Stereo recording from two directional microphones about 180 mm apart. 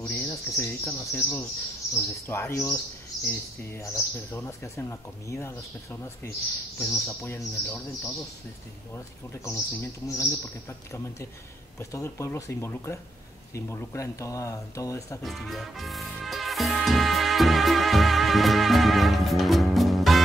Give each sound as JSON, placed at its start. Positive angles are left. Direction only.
{"t": 0.0, "sound": "speech", "side_deg": 15}
{"t": 11.8, "sound": "speech", "side_deg": 15}
{"t": 15.2, "sound": "music", "side_deg": 0}